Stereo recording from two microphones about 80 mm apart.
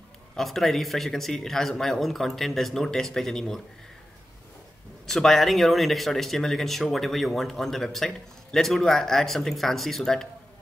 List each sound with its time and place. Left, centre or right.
0.4 s speech: centre
5.0 s speech: centre